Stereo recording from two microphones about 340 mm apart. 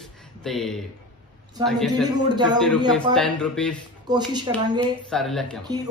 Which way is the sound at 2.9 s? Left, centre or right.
Centre.